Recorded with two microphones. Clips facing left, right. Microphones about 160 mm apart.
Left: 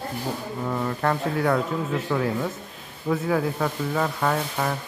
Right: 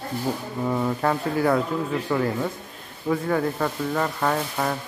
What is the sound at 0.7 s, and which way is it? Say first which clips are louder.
Speech: right 2 dB; 5° right (ahead or behind).